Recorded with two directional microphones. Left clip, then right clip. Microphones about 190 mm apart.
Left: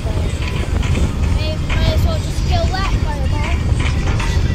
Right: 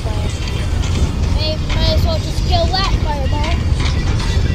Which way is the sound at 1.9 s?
30° left (ahead or behind).